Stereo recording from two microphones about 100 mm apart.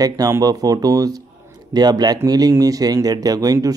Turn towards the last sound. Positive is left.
turn(degrees=-40)  # may be behind; listen again after turning